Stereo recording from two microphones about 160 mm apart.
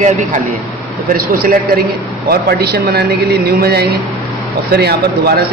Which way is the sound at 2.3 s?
80° right.